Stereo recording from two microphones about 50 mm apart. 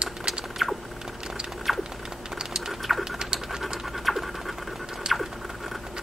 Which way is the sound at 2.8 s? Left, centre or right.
Centre.